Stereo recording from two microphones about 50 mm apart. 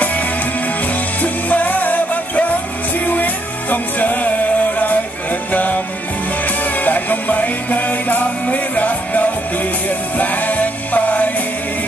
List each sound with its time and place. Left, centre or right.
0.0 s music: left
3.7 s music: left